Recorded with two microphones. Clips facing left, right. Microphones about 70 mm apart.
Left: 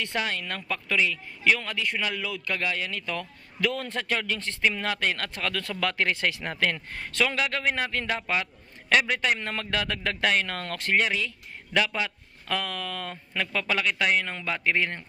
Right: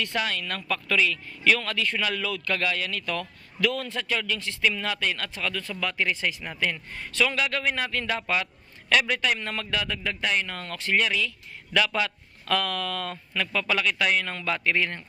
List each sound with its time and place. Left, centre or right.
0.0 s a man's voice: left
7.2 s a man's voice: left
11.0 s speech: left